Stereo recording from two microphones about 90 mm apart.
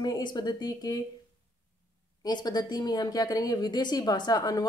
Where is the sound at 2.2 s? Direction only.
50° left (ahead or behind).